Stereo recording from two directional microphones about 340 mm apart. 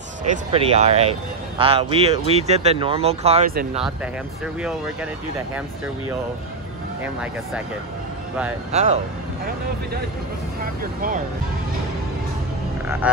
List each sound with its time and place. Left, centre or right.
0.3 s speech: centre
8.7 s speech: centre
13.0 s a sound: centre